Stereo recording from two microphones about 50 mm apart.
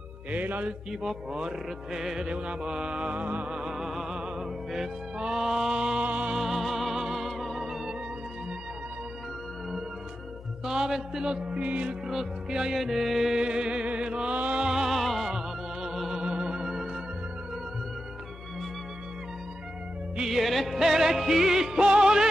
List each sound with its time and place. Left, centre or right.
0.3 s music: right
1.0 s a man's voice: centre
2.2 s mantra: right
2.7 s a man's voice: centre
3.1 s mantra: right
3.4 s music: centre
6.3 s music: centre
10.6 s a man's voice: centre
12.1 s a man's voice: centre
13.4 s music: centre
14.6 s music: centre
15.0 s music: centre
20.2 s music: centre